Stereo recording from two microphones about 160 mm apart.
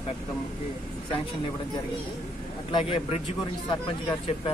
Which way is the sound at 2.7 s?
35° left (ahead or behind).